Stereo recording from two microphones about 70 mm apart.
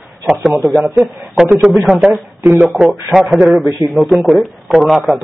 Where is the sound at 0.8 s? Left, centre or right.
Centre.